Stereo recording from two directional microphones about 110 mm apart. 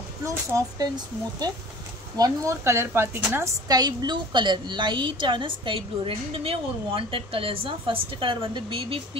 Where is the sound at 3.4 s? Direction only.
35° right (ahead or behind).